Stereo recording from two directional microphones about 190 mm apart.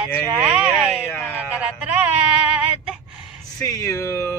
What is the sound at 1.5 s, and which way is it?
Speech, 5° right (ahead or behind).